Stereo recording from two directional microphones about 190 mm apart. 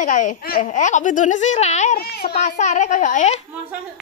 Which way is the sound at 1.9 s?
55° left (ahead or behind).